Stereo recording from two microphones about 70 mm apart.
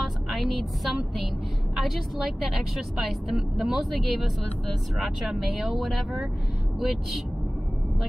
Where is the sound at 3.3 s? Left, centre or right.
Centre.